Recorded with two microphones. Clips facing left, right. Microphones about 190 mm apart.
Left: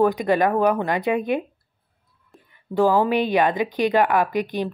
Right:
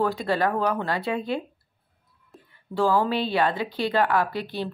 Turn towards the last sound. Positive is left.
turn(degrees=15)  # may be behind; listen again after turning